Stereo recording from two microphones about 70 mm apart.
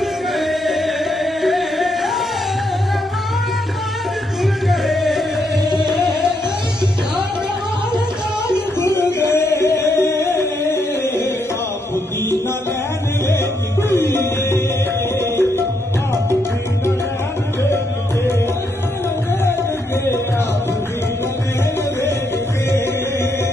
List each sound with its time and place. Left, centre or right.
0.0 s music: centre
4.4 s music: centre
8.8 s singing: left
13.8 s music: left